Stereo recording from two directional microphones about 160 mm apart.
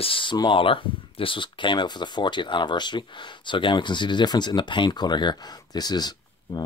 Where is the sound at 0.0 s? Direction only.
30° left (ahead or behind).